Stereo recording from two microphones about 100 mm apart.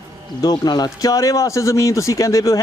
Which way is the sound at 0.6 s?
45° left (ahead or behind).